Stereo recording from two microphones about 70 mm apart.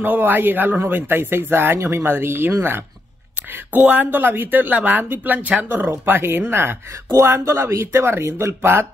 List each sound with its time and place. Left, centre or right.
0.0 s speech: right